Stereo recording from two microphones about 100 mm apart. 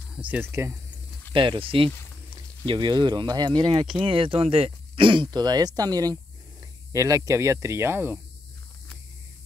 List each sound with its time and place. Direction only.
0.1 s a sound: 15° right (ahead or behind)
0.5 s speech: 25° right (ahead or behind)
1.3 s speech: 55° right (ahead or behind)
2.6 s speech: 50° right (ahead or behind); by 8.2 s 25° right (ahead or behind)